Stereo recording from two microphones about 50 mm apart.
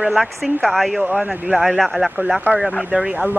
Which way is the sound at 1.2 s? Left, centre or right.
Centre.